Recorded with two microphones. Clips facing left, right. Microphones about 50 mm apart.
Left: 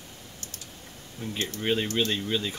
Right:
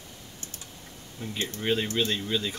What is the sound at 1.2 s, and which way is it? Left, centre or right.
Speech, left.